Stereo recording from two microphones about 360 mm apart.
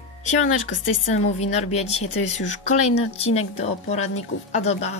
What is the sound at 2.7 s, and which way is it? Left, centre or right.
Speech, centre.